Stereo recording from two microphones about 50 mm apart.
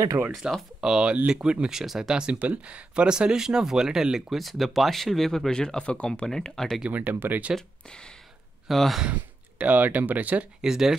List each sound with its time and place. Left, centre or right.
0.4 s speech: centre
2.2 s speech: right; by 6.2 s left
6.2 s speech: centre
6.9 s speech: right
8.6 s speech: centre
9.1 s speech: right
10.6 s speech: centre